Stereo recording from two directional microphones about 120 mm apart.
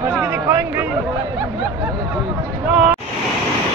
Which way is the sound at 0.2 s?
20° right (ahead or behind).